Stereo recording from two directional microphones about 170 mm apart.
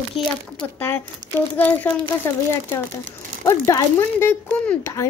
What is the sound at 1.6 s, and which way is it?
Speech, 10° left (ahead or behind).